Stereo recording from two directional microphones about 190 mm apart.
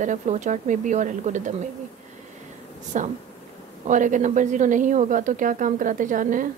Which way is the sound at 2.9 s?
40° right (ahead or behind).